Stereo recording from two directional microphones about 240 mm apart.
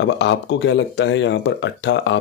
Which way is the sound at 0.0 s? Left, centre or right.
Left.